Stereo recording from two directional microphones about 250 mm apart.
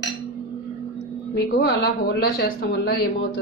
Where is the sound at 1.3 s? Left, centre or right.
Left.